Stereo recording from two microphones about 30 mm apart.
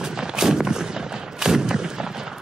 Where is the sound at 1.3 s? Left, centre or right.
Centre.